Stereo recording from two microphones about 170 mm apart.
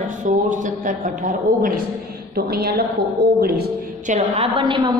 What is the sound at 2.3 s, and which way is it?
Speech, 65° right (ahead or behind).